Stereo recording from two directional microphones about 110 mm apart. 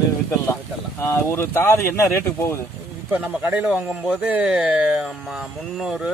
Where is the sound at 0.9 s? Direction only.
30° left (ahead or behind).